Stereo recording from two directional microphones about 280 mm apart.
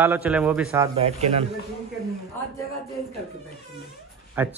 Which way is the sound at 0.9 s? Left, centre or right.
Right.